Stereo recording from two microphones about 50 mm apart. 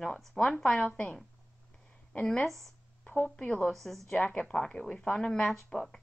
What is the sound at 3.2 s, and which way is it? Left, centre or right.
Speech, left.